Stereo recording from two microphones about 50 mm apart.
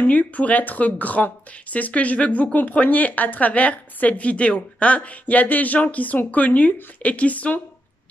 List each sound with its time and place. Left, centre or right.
0.0 s speech: left